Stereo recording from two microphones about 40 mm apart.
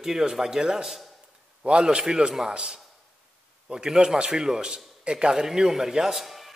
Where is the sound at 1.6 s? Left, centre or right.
Right.